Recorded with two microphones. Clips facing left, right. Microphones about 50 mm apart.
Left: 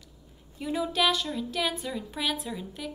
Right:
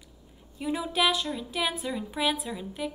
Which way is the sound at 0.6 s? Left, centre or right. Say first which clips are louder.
Even; centre.